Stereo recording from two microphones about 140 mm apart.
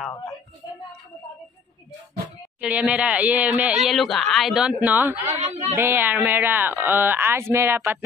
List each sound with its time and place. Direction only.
2.6 s speech: 10° right (ahead or behind)
5.4 s a woman's voice: 55° right (ahead or behind)
5.8 s speech: 15° right (ahead or behind)